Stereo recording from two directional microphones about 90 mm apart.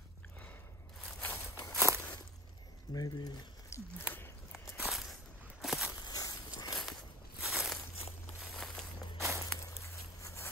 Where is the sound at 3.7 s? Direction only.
35° left (ahead or behind).